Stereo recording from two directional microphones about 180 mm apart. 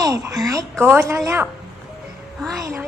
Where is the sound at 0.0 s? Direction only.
20° right (ahead or behind).